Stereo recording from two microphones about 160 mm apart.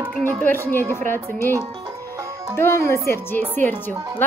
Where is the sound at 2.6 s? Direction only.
15° left (ahead or behind).